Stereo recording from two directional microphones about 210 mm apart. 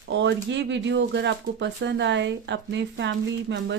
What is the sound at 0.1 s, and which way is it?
A woman's voice, 60° right (ahead or behind).